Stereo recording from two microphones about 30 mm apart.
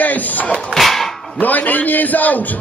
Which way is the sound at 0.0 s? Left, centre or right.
Left.